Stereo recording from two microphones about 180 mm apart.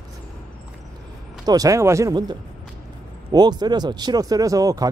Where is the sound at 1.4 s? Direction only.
20° right (ahead or behind).